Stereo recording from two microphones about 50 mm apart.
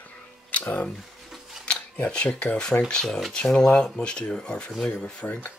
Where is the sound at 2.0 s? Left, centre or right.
Left.